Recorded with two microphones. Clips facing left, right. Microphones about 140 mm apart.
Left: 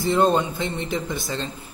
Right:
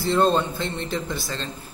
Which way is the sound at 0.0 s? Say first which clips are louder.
Left 1 dB; 15° left (ahead or behind).